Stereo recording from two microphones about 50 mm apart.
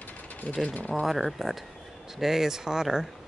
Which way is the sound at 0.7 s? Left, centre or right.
Left.